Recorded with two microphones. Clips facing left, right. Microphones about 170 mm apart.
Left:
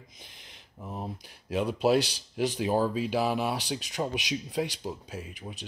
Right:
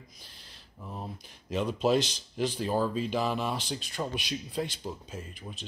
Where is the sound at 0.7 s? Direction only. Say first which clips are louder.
Left 3 dB; 15° left (ahead or behind).